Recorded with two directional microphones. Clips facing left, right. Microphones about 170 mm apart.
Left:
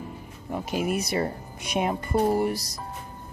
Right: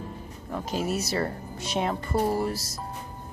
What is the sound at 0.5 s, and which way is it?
Speech, 10° left (ahead or behind).